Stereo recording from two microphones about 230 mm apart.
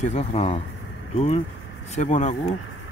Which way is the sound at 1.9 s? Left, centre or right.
Left.